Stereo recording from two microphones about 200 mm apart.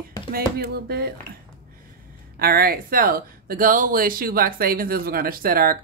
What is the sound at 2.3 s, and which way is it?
Speech, 50° right (ahead or behind).